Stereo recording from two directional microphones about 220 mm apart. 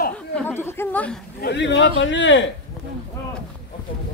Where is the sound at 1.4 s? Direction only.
50° left (ahead or behind).